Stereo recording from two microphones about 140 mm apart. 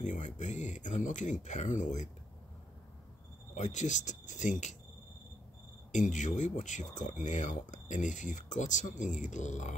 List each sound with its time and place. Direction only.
0.0 s speech: 60° left (ahead or behind)
3.5 s speech: 60° left (ahead or behind)
5.9 s speech: 60° left (ahead or behind)